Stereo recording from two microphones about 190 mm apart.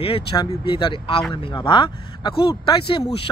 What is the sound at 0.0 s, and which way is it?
Speech, 30° left (ahead or behind).